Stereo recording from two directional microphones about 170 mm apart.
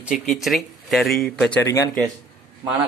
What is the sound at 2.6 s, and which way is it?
Speech, 20° right (ahead or behind).